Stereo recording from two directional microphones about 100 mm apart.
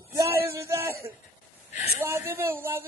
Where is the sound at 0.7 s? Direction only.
25° right (ahead or behind).